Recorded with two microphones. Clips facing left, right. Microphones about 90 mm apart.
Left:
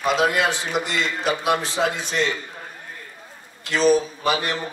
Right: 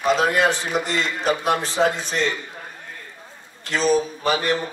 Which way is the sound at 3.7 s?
40° right (ahead or behind).